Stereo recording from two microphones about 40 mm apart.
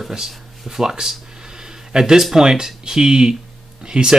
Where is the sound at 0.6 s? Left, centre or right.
Centre.